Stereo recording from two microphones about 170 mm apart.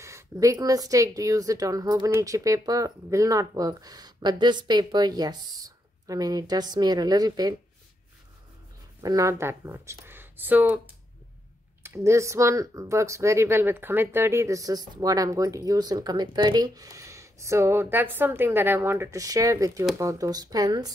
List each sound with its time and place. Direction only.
0.0 s speech: 20° right (ahead or behind)
9.0 s speech: 20° right (ahead or behind)
11.8 s speech: 15° right (ahead or behind)